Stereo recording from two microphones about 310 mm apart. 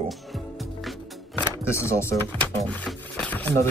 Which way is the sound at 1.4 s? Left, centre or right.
Centre.